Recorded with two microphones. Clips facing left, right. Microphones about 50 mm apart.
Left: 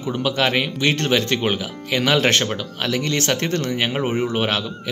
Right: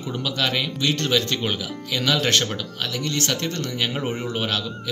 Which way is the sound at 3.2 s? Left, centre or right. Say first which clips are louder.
Left 4 dB; left.